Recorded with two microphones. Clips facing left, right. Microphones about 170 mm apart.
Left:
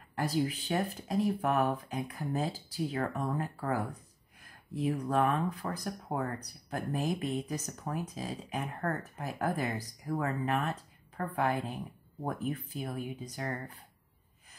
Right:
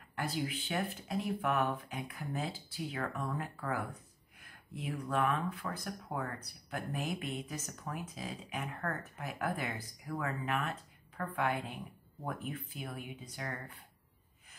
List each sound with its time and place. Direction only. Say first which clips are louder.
0.1 s speech: left 6 dB; 40° left (ahead or behind)